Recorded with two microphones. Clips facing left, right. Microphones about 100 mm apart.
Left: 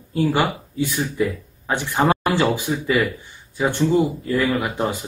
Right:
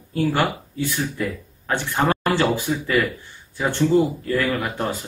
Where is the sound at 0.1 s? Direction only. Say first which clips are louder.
Left 1 dB; 15° left (ahead or behind).